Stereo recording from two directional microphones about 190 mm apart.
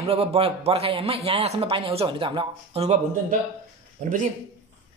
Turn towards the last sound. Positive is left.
turn(degrees=-45)  # may be behind; listen again after turning